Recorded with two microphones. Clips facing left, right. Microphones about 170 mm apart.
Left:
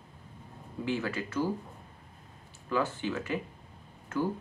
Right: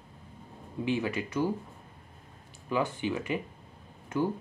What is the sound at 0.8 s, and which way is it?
Speech, 20° right (ahead or behind).